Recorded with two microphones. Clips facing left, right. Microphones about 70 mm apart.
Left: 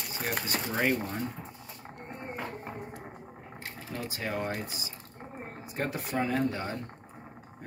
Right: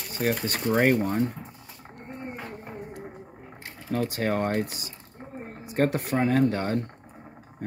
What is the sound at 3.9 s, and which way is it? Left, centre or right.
Speech, right.